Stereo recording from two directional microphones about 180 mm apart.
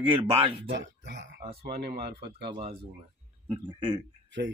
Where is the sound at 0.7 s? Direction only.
75° right (ahead or behind).